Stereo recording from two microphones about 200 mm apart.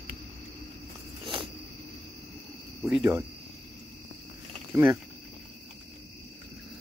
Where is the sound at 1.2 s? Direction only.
25° right (ahead or behind).